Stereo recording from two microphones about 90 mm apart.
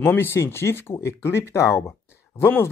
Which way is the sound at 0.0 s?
25° left (ahead or behind).